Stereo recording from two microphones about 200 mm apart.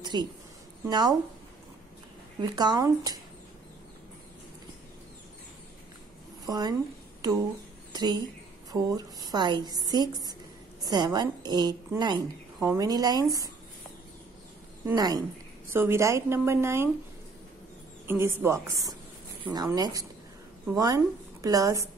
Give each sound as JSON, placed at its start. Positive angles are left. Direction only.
{"t": 0.0, "sound": "a woman's voice", "side_deg": -20}
{"t": 2.4, "sound": "a woman's voice", "side_deg": -20}
{"t": 6.4, "sound": "a woman's voice", "side_deg": -20}
{"t": 14.9, "sound": "a woman's voice", "side_deg": -20}
{"t": 18.0, "sound": "a woman's voice", "side_deg": -10}